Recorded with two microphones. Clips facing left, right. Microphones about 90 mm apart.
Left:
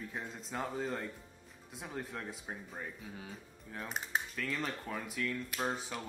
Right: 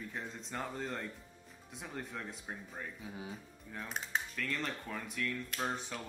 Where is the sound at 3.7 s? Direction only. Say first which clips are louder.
Left 1 dB; 5° left (ahead or behind).